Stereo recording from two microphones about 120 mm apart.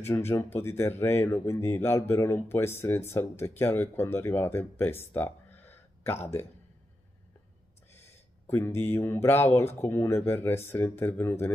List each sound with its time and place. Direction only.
0.0 s speech: 20° left (ahead or behind)
7.9 s speech: 20° left (ahead or behind)